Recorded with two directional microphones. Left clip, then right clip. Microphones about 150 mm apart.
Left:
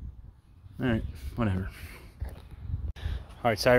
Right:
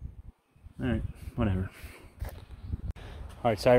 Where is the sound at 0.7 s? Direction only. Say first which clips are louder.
Left 3 dB; 35° left (ahead or behind).